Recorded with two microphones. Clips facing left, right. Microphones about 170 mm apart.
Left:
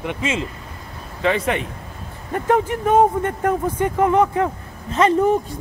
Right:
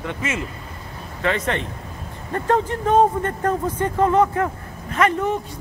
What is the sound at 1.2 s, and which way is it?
Speech, 10° left (ahead or behind).